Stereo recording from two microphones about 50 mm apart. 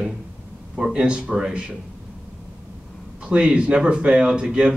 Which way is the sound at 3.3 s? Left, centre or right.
Centre.